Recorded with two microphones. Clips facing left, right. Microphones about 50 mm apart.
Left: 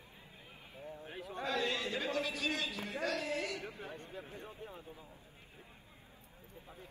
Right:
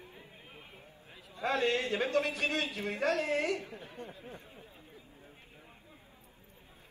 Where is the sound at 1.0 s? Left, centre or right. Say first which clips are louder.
Left 8 dB; left.